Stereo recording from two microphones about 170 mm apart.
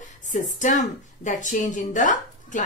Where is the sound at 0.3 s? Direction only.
45° left (ahead or behind).